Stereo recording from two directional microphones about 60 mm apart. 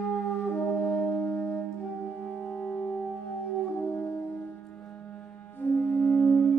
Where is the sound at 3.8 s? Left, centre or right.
Left.